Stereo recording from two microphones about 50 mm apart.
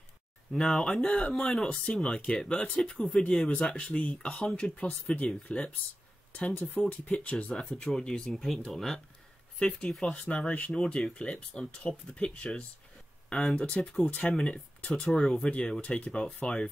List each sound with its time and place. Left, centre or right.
0.6 s speech: centre
6.5 s speech: left
6.9 s speech: left
9.6 s speech: left
13.6 s speech: left
14.5 s speech: left
15.0 s speech: centre